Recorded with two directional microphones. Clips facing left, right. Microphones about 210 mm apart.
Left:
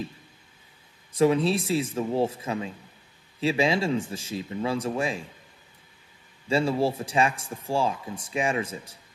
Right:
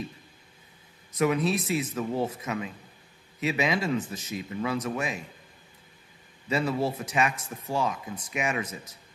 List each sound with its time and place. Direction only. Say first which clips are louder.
1.1 s speech: left 4 dB; 30° left (ahead or behind)
6.5 s speech: left 3 dB; 30° left (ahead or behind)